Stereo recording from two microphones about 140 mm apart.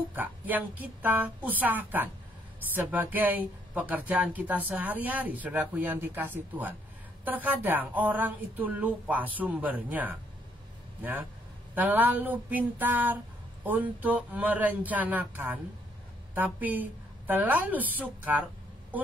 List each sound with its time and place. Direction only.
0.1 s speech: 10° right (ahead or behind)